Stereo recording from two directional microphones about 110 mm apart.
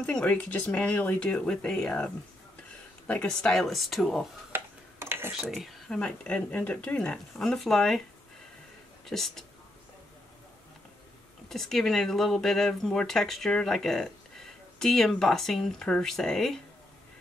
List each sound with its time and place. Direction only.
0.0 s speech: 10° left (ahead or behind)
3.1 s speech: 10° left (ahead or behind)
4.5 s a sound: 20° right (ahead or behind)
5.4 s speech: centre (ahead or behind)
9.0 s speech: 5° left (ahead or behind)
11.4 s speech: 5° left (ahead or behind)